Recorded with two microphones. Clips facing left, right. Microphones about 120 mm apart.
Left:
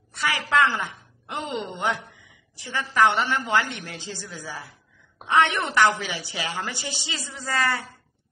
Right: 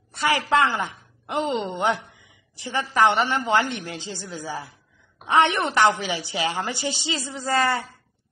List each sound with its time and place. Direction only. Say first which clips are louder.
0.1 s a woman's voice: right 3 dB; 30° right (ahead or behind)